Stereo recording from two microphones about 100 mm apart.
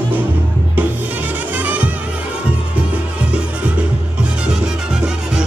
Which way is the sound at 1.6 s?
15° right (ahead or behind).